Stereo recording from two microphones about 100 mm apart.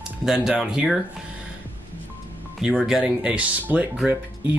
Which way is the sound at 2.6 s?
5° right (ahead or behind).